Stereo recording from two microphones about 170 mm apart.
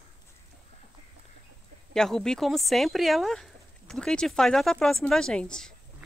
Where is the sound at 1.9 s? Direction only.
5° left (ahead or behind).